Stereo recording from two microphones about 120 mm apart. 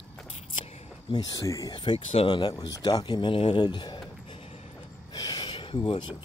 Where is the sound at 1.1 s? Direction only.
35° left (ahead or behind).